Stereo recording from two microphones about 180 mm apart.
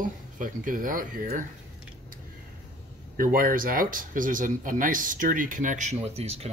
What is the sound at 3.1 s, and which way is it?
Speech, 50° right (ahead or behind).